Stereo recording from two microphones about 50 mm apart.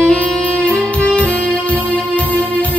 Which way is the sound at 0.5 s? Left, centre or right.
Left.